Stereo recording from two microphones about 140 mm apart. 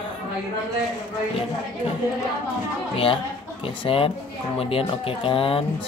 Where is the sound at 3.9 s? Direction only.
40° left (ahead or behind).